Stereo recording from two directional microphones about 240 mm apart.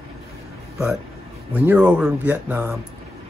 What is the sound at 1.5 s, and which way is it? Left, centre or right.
Speech, centre.